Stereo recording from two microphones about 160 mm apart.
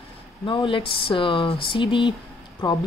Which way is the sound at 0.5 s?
30° left (ahead or behind).